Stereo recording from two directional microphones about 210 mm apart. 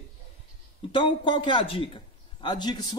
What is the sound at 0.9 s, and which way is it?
A man's voice, 25° left (ahead or behind).